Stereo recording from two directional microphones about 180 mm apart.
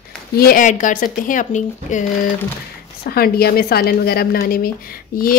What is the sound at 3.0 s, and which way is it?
A woman's voice, 60° left (ahead or behind).